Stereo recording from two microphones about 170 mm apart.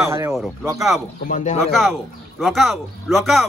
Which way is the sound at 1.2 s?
50° left (ahead or behind).